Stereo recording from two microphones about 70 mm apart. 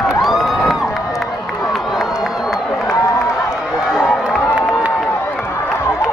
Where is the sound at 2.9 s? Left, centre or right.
Left.